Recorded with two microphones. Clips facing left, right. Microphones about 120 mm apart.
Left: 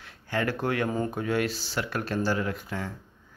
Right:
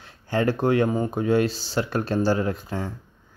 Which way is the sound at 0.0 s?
30° right (ahead or behind).